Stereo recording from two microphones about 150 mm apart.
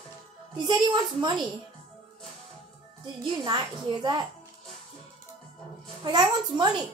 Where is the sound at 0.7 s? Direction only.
30° right (ahead or behind).